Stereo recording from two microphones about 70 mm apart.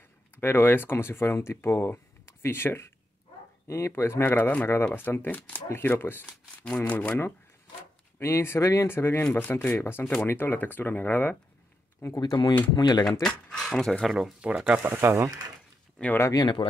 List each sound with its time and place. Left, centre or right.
0.4 s speech: left
4.3 s speech: left
6.2 s shuffling cards: centre
6.9 s speech: centre
8.2 s speech: left
12.2 s speech: left
13.2 s speech: centre
14.4 s speech: centre
14.9 s speech: right
16.0 s speech: centre